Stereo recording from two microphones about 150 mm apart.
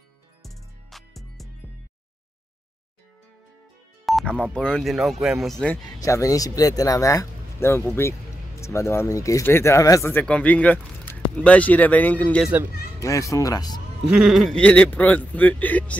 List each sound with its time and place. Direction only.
0.4 s music: centre (ahead or behind)
4.0 s speech: centre (ahead or behind)
5.9 s speech: 20° left (ahead or behind)
10.2 s speech: 10° left (ahead or behind)
13.0 s speech: 20° left (ahead or behind)
14.1 s speech: centre (ahead or behind)